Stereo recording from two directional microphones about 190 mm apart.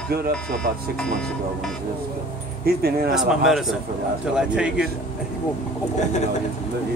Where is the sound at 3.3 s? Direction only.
Centre (ahead or behind).